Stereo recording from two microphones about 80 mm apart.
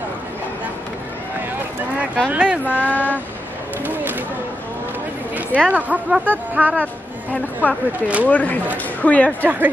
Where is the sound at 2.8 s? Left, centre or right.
Centre.